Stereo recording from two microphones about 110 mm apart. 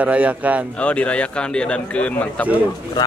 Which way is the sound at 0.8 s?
10° left (ahead or behind).